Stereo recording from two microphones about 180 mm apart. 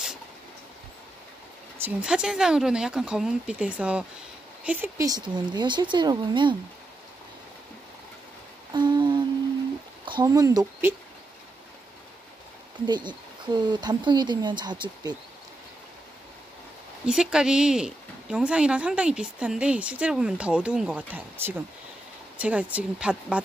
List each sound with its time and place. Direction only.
1.8 s speech: 5° right (ahead or behind); by 6.5 s 25° right (ahead or behind)
8.7 s humming: 25° right (ahead or behind)
10.0 s speech: 25° right (ahead or behind)
12.8 s speech: 25° right (ahead or behind)
17.0 s speech: 5° right (ahead or behind)